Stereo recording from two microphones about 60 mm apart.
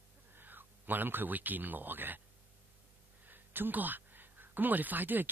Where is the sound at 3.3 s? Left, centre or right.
Right.